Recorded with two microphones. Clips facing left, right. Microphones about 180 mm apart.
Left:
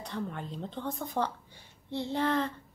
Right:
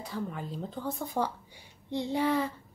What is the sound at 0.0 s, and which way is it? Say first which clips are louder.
A woman's voice: right 1 dB; 5° right (ahead or behind).